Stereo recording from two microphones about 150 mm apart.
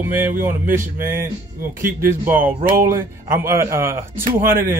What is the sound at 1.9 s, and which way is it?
Speech, 65° right (ahead or behind).